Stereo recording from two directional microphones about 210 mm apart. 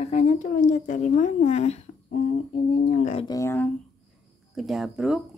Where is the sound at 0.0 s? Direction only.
35° left (ahead or behind).